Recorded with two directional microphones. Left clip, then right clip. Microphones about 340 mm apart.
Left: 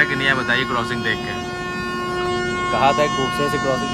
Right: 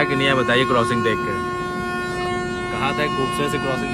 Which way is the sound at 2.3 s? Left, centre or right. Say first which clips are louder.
Left 4 dB; right.